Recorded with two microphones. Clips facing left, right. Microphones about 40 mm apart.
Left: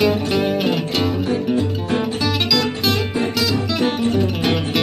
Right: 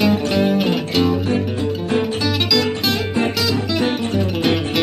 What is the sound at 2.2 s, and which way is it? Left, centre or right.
Music, centre.